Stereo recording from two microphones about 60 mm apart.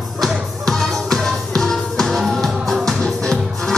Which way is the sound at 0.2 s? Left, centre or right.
Centre.